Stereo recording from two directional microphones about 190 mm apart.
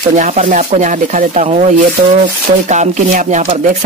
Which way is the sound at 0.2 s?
40° right (ahead or behind).